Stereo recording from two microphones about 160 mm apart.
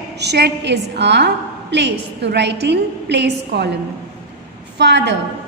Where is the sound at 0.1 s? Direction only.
90° right.